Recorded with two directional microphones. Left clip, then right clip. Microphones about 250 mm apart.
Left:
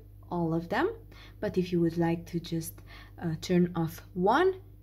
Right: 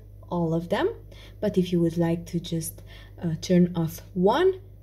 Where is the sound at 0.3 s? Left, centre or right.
Centre.